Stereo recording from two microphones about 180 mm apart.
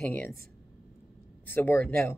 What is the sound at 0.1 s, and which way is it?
Speech, 10° left (ahead or behind).